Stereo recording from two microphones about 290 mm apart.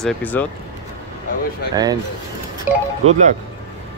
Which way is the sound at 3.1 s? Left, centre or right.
Right.